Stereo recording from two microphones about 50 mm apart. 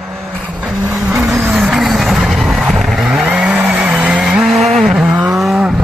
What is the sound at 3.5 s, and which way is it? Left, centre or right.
Vehicle, right.